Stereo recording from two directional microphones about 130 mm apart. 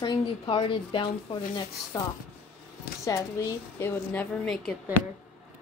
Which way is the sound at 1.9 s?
35° left (ahead or behind).